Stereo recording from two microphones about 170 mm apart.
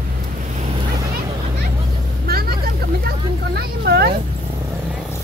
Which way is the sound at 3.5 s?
70° right (ahead or behind).